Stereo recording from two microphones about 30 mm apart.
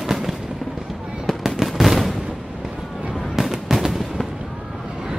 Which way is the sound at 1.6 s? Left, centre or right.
Centre.